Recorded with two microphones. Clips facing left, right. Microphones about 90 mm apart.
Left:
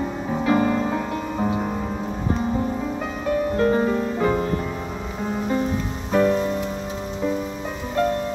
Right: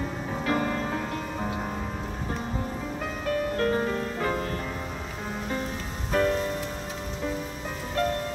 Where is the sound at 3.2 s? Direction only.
15° left (ahead or behind).